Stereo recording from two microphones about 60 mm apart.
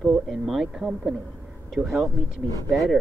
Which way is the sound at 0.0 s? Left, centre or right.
Centre.